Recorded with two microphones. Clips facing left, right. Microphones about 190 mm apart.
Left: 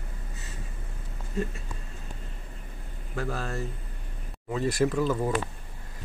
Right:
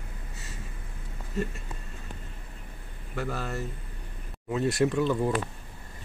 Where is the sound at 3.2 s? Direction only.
Centre (ahead or behind).